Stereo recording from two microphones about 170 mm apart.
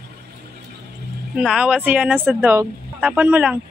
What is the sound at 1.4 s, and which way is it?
Speech, 5° right (ahead or behind).